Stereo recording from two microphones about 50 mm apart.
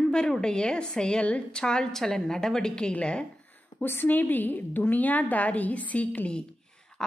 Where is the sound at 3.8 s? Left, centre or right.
Left.